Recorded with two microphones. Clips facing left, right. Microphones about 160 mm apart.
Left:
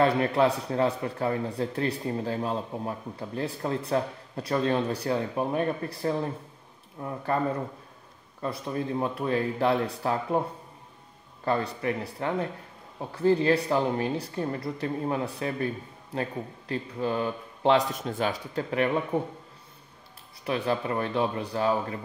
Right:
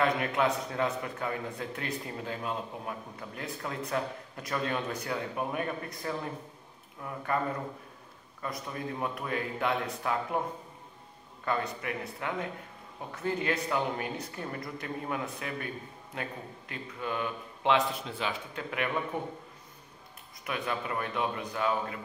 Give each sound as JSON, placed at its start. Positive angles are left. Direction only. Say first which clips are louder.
{"t": 0.0, "sound": "a man's voice", "louder": "left 5 dB", "side_deg": 35}
{"t": 8.4, "sound": "a man's voice", "louder": "left 6 dB", "side_deg": 30}
{"t": 11.4, "sound": "a man's voice", "louder": "left 5 dB", "side_deg": 35}
{"t": 20.4, "sound": "a man's voice", "louder": "left 7 dB", "side_deg": 30}